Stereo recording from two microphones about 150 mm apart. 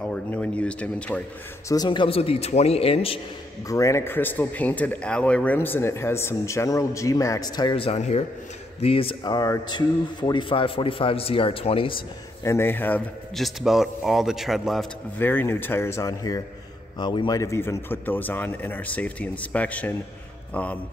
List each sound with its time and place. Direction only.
0.0 s a man's voice: 10° left (ahead or behind)
1.7 s speech: 30° left (ahead or behind)
3.6 s a man's voice: 20° left (ahead or behind); by 11.9 s 40° left (ahead or behind)
12.4 s a man's voice: 15° left (ahead or behind)
13.4 s a man's voice: centre (ahead or behind)
15.1 s a man's voice: 15° left (ahead or behind); by 17.4 s 30° left (ahead or behind)
17.4 s a man's voice: 20° left (ahead or behind)